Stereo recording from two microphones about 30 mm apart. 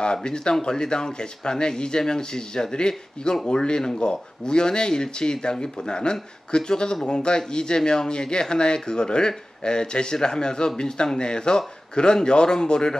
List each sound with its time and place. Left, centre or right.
0.0 s speech: left